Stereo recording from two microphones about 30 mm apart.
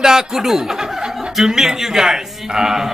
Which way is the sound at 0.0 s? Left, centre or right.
Centre.